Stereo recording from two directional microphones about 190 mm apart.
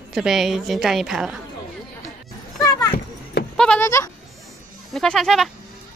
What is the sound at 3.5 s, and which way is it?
Speech, 5° left (ahead or behind).